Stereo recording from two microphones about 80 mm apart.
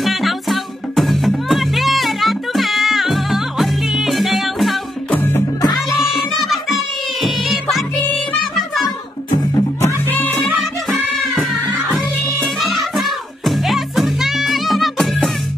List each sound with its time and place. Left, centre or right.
0.0 s music: centre
5.1 s music: left
5.9 s music: centre
10.0 s music: left
10.4 s music: centre
12.4 s music: centre